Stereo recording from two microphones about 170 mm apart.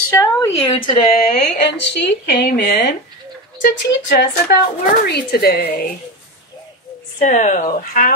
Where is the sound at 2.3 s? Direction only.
70° left (ahead or behind).